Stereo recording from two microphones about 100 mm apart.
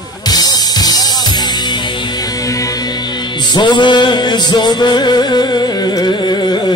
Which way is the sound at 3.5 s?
50° left (ahead or behind).